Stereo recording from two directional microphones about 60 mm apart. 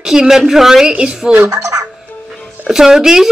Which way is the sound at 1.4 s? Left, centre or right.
Right.